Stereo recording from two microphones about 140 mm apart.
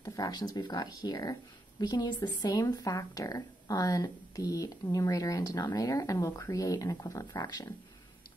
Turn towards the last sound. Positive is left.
turn(degrees=30)  # may be behind; listen again after turning